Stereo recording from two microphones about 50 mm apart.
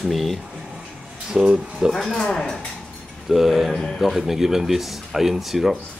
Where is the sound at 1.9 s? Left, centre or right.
Centre.